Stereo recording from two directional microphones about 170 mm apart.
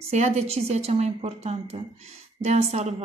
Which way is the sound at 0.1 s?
40° right (ahead or behind).